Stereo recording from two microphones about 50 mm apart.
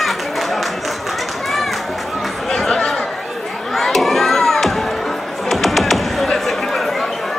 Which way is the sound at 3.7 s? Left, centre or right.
Centre.